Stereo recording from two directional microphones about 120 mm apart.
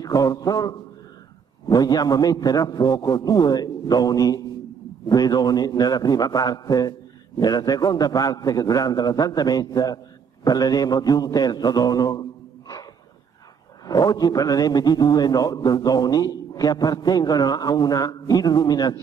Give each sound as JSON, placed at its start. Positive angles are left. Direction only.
{"t": 0.0, "sound": "a man's voice", "side_deg": 30}
{"t": 13.8, "sound": "a man's voice", "side_deg": 30}